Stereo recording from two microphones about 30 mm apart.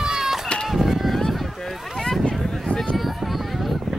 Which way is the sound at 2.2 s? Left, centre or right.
Left.